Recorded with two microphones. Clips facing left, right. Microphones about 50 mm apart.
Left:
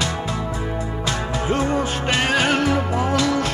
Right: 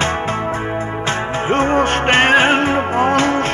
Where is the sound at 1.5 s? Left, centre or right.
Right.